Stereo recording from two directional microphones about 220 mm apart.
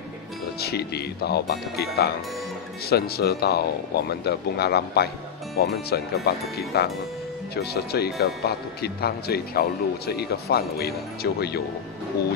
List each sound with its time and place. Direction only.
0.6 s speech: 45° left (ahead or behind)